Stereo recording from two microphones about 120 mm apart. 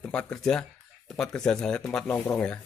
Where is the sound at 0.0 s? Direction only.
10° left (ahead or behind).